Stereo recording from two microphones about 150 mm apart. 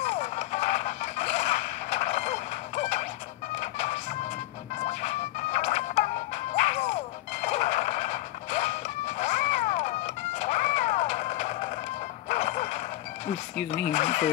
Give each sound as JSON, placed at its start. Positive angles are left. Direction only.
{"t": 0.0, "sound": "a sound", "side_deg": 50}
{"t": 3.5, "sound": "music", "side_deg": 50}
{"t": 7.4, "sound": "neigh", "side_deg": 50}
{"t": 10.4, "sound": "music", "side_deg": 50}
{"t": 12.3, "sound": "a sound", "side_deg": 50}
{"t": 13.8, "sound": "speech", "side_deg": 50}